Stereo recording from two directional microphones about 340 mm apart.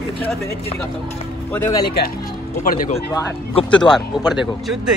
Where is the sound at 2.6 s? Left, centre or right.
Left.